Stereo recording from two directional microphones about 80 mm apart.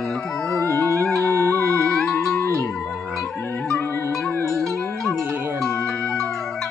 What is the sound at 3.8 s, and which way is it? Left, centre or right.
Music, left.